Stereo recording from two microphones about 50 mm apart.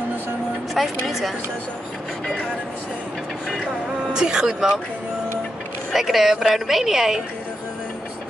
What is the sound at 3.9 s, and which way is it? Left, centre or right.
Speech, centre.